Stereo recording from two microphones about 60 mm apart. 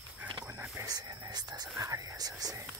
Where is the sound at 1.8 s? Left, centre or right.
Right.